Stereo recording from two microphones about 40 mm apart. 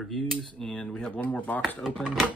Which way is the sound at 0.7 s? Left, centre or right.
Left.